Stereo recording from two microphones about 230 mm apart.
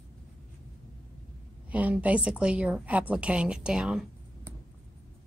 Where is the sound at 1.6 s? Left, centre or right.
Centre.